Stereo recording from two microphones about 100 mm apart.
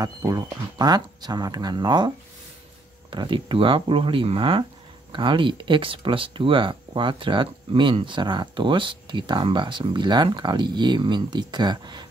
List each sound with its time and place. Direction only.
0.0 s speech: 35° right (ahead or behind)